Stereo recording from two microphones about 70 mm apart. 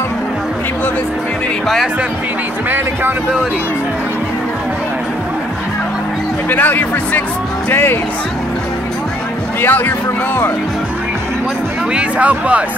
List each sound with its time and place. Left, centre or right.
6.5 s speech: left
9.6 s speech: left
11.9 s speech: centre